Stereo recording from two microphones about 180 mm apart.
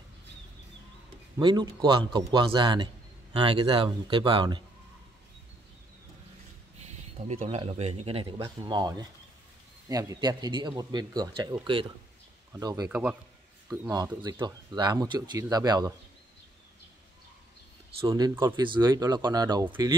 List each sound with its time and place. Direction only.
1.4 s a man's voice: 25° right (ahead or behind)
6.9 s a sound: 40° right (ahead or behind)
7.4 s a man's voice: 30° right (ahead or behind)
12.8 s a man's voice: 5° right (ahead or behind)
13.7 s a man's voice: 15° right (ahead or behind)
18.0 s a man's voice: 20° right (ahead or behind)
19.6 s a man's voice: 10° right (ahead or behind)